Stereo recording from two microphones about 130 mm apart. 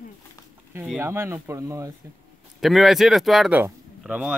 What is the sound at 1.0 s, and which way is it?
Speech, 20° right (ahead or behind).